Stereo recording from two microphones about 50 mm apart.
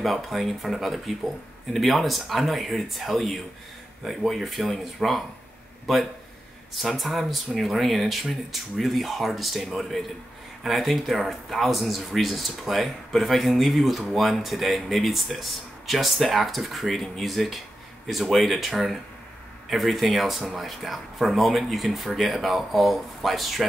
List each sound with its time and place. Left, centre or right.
0.0 s speech: centre